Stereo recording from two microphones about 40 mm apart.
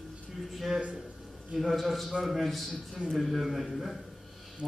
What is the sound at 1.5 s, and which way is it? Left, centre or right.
A man's voice, centre.